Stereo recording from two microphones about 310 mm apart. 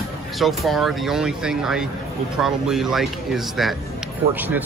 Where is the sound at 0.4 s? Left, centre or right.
Centre.